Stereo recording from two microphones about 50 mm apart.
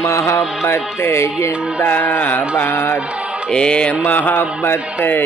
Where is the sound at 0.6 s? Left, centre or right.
Left.